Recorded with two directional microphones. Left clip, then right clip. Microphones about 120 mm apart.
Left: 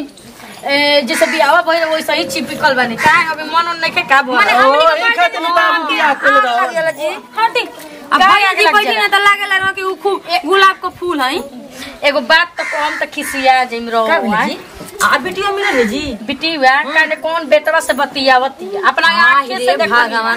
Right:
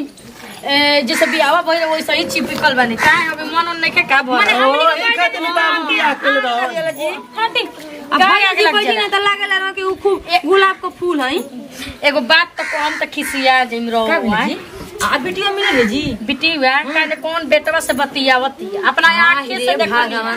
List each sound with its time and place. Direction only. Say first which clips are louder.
0.7 s a woman's voice: left 1 dB; centre (ahead or behind); by 7.6 s 15° left (ahead or behind)
8.2 s a woman's voice: left 2 dB; centre (ahead or behind)
8.9 s speech: left 4 dB; 15° left (ahead or behind)
12.0 s a woman's voice: left 1 dB; centre (ahead or behind)
14.5 s a woman's voice: even; 15° left (ahead or behind)
16.3 s a woman's voice: left 3 dB; centre (ahead or behind)
19.3 s speech: left 4 dB; 10° left (ahead or behind)